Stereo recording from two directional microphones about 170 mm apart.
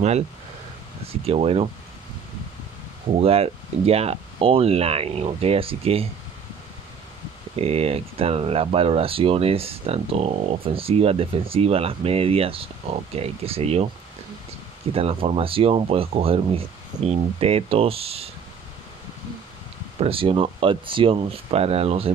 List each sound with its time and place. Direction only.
1.0 s speech: 35° right (ahead or behind)
3.2 s speech: 35° right (ahead or behind)
7.5 s speech: 35° right (ahead or behind)
14.9 s speech: 35° right (ahead or behind)
20.0 s speech: 35° right (ahead or behind)